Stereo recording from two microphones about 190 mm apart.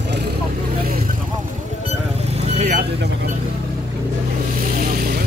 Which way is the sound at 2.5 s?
35° right (ahead or behind).